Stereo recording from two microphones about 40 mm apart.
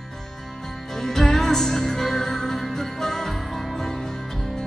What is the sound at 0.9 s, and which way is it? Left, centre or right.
Music, centre.